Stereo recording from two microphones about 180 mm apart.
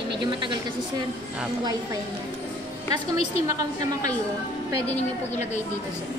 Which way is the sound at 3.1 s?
35° left (ahead or behind).